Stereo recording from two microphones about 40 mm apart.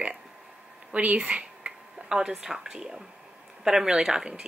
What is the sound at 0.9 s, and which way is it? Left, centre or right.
Speech, right.